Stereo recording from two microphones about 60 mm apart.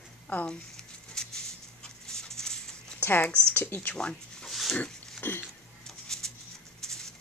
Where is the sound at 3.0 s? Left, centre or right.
Left.